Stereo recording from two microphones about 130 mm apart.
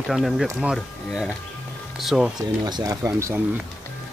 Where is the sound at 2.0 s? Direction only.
5° right (ahead or behind).